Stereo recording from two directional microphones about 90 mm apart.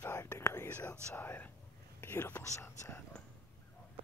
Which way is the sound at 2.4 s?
35° left (ahead or behind).